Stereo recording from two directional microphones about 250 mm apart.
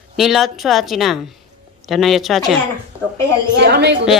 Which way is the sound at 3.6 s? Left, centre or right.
Right.